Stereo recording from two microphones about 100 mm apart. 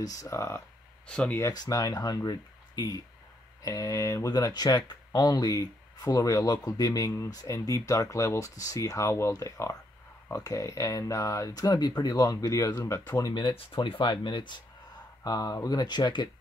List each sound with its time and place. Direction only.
0.0 s speech: 35° left (ahead or behind)
1.0 s speech: 5° left (ahead or behind)
1.5 s speech: 40° left (ahead or behind)
13.1 s speech: 45° left (ahead or behind)
15.2 s speech: 40° left (ahead or behind)